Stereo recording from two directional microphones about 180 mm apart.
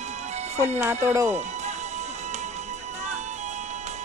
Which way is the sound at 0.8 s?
15° right (ahead or behind).